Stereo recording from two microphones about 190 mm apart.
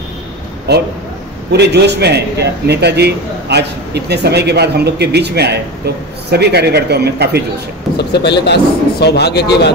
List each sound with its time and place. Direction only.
0.7 s a man's voice: 60° right (ahead or behind)
8.0 s speech: 60° left (ahead or behind)